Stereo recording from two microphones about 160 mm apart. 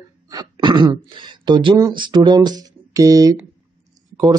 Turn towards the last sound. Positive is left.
turn(degrees=-25)  # may be behind; listen again after turning